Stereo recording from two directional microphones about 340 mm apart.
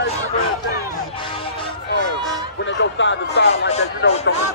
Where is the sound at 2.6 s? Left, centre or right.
Left.